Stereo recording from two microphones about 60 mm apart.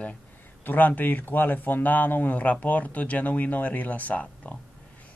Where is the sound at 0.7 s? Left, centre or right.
Left.